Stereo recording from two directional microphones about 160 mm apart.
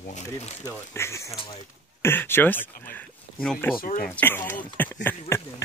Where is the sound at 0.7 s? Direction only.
15° left (ahead or behind).